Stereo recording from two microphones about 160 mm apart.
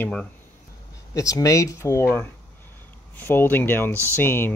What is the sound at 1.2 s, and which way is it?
Speech, 20° left (ahead or behind).